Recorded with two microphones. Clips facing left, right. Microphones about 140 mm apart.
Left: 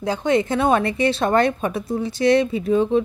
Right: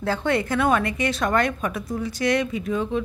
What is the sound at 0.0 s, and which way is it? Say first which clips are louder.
A woman's voice: left 4 dB; 15° left (ahead or behind).